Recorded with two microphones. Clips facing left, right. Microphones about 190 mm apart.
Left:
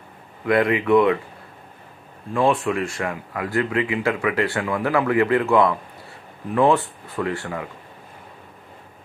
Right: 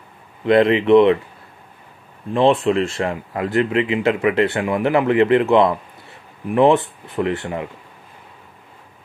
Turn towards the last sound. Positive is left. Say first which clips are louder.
# right 4 dB
turn(degrees=-20)  # may be behind; listen again after turning